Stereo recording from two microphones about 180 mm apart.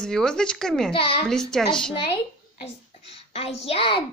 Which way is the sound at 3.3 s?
35° left (ahead or behind).